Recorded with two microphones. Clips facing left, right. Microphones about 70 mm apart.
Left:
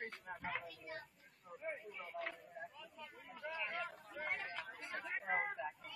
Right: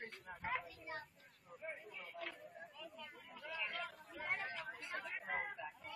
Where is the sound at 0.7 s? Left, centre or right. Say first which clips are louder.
Even; right.